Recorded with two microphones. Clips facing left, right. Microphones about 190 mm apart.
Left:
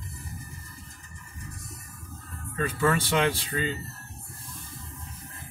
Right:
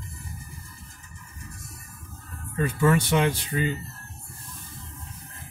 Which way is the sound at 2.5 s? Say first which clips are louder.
Right 3 dB; 15° right (ahead or behind).